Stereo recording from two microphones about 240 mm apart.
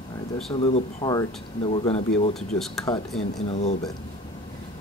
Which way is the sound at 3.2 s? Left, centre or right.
Left.